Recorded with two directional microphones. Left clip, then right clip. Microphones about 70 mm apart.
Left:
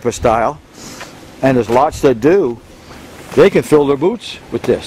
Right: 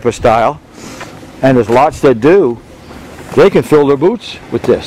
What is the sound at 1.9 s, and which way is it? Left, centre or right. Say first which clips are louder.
Speech: right 3 dB; left.